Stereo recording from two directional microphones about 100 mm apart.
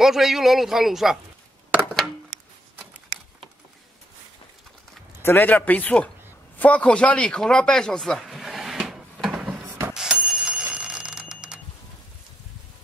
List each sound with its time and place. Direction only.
0.0 s a man's voice: 5° right (ahead or behind)
5.2 s speech: 20° left (ahead or behind)
6.6 s a sound: 10° left (ahead or behind); by 9.6 s 10° right (ahead or behind)
9.9 s bicycle bell: 5° right (ahead or behind)